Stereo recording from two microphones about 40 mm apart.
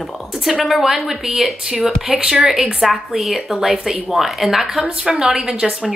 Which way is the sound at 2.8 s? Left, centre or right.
Centre.